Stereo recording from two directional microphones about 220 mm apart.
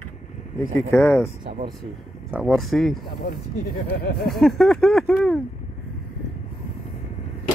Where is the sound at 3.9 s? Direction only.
45° left (ahead or behind).